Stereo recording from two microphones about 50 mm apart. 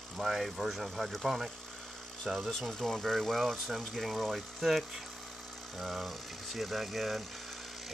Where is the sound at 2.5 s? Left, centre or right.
Centre.